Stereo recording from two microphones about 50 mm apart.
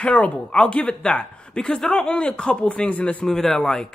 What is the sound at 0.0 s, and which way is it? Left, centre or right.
A man's voice, left.